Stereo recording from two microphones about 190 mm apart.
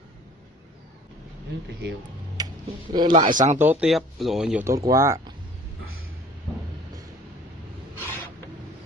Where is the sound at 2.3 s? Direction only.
20° right (ahead or behind).